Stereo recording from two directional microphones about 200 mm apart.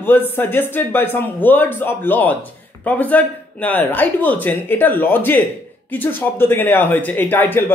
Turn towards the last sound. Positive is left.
turn(degrees=10)  # may be behind; listen again after turning